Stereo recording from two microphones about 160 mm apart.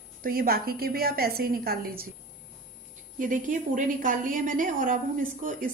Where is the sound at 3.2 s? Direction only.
55° right (ahead or behind).